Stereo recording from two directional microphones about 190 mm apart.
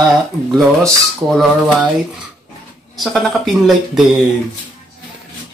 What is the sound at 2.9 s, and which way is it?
Speech, centre (ahead or behind).